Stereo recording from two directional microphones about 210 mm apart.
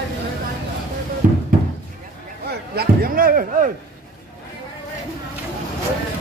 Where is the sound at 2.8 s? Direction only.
45° right (ahead or behind).